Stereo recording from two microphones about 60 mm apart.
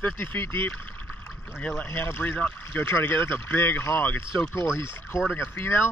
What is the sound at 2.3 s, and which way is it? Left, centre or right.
Speech, left.